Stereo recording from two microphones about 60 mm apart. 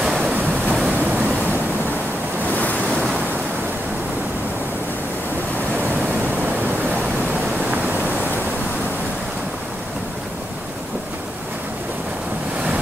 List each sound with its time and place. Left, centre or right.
0.0 s waves: centre
0.3 s waves: right
2.5 s waves: left